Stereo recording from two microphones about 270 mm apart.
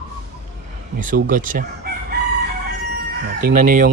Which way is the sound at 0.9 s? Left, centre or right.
Right.